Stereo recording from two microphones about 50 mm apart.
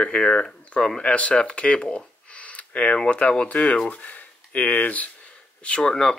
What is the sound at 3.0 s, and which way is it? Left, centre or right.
Speech, left.